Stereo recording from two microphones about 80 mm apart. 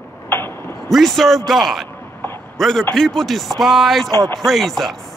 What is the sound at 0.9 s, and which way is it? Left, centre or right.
Speech, centre.